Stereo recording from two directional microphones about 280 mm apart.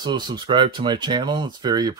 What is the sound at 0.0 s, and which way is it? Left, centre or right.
Speech, centre.